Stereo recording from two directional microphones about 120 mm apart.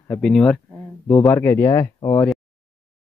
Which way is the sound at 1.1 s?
15° left (ahead or behind).